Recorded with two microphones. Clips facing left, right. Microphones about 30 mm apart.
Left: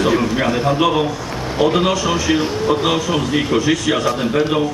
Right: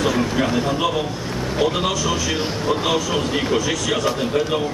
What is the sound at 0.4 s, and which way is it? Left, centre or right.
A man's voice, left.